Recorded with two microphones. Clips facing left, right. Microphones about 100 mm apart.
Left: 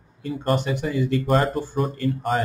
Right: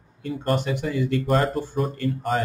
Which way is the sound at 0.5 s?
20° left (ahead or behind).